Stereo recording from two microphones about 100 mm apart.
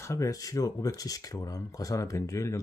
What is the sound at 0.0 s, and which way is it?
Speech, 30° left (ahead or behind).